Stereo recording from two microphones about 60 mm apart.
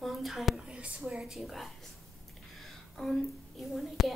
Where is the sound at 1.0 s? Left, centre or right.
Centre.